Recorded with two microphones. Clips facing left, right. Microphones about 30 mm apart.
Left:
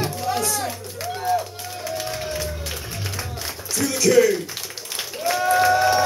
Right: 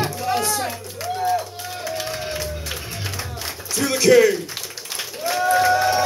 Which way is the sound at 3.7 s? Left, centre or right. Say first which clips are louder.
Right 2 dB; right.